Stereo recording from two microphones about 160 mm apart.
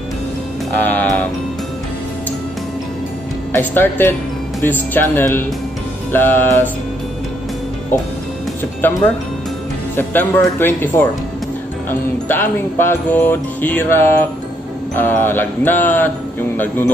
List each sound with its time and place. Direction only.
0.7 s music: 10° left (ahead or behind)
3.5 s music: 15° left (ahead or behind)
8.8 s music: 10° left (ahead or behind)